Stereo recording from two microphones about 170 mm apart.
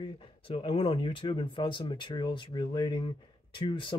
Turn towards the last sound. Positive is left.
turn(degrees=30)  # may be behind; listen again after turning